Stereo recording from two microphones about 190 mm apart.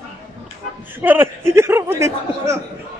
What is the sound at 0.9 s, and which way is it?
A man's voice, 10° right (ahead or behind).